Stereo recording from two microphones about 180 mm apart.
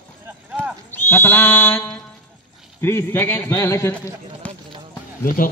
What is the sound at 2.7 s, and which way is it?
A man's voice, 15° left (ahead or behind).